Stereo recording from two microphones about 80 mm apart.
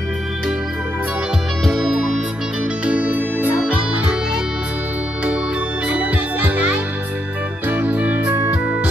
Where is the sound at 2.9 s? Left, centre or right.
Centre.